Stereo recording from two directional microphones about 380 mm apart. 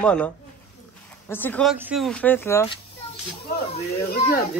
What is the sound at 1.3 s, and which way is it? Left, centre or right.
Speech, centre.